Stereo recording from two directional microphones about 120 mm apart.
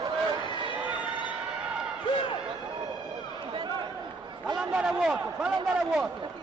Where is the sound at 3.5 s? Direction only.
40° right (ahead or behind).